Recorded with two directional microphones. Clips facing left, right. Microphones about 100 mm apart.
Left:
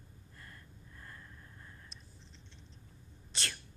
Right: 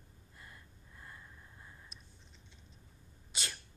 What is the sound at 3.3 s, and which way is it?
Sneeze, 10° right (ahead or behind).